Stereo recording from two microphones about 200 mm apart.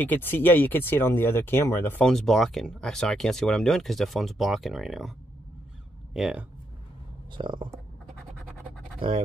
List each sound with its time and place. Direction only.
0.0 s speech: 10° left (ahead or behind)
6.1 s speech: 5° right (ahead or behind)
7.3 s speech: 25° right (ahead or behind)